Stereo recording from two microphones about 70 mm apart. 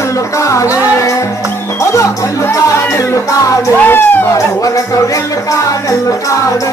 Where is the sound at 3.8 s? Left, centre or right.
Left.